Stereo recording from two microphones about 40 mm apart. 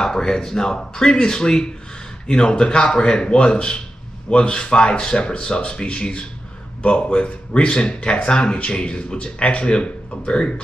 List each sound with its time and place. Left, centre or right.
0.0 s speech: centre